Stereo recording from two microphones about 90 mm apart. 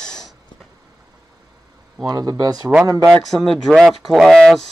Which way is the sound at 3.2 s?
Centre (ahead or behind).